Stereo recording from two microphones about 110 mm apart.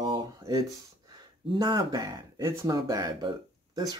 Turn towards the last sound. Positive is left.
turn(degrees=-40)  # may be behind; listen again after turning